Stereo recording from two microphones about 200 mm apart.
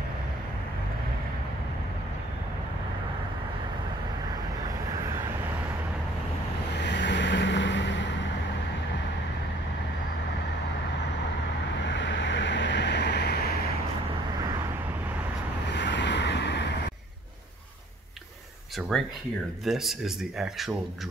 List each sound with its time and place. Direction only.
6.8 s vehicle: 60° left (ahead or behind)
11.7 s vehicle: 65° left (ahead or behind)
15.7 s vehicle: 60° left (ahead or behind)
18.8 s speech: centre (ahead or behind)